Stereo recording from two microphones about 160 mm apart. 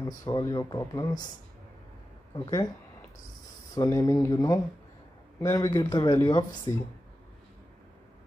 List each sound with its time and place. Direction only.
0.0 s speech: 25° left (ahead or behind)
2.4 s speech: 25° left (ahead or behind)
3.7 s speech: 20° left (ahead or behind)